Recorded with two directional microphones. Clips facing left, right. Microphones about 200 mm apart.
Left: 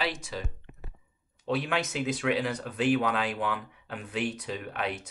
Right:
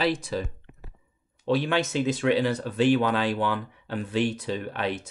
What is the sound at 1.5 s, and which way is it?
Speech, 30° right (ahead or behind).